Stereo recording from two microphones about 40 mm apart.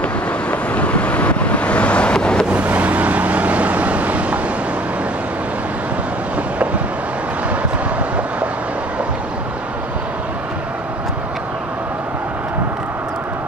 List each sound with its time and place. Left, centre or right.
0.5 s vehicle: left
2.1 s vehicle: centre
2.5 s vehicle: right